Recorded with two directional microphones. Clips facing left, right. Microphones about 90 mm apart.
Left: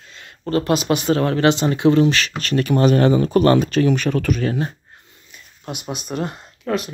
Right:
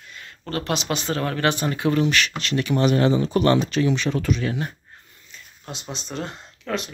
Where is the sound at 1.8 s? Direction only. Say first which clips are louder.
Left 5 dB; 30° left (ahead or behind); by 4.6 s 50° left (ahead or behind).